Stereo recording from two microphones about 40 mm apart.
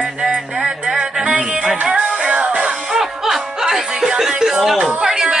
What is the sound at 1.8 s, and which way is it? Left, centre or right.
Music, right.